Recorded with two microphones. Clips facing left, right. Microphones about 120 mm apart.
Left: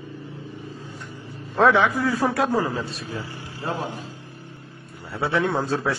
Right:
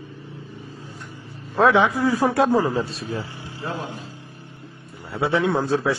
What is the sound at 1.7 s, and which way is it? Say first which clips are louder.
A man's voice: right 2 dB; 20° right (ahead or behind).